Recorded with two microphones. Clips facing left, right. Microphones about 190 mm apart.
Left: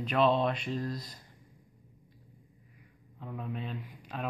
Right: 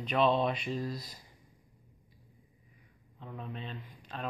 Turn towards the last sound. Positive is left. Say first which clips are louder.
# left 3 dB
turn(degrees=10)  # may be behind; listen again after turning